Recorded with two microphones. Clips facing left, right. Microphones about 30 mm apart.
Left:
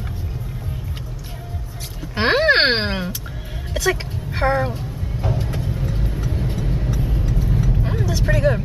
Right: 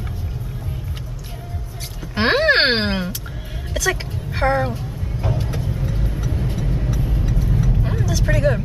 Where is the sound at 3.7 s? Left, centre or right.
Centre.